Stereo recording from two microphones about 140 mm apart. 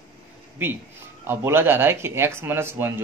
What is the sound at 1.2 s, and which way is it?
Speech, 15° right (ahead or behind).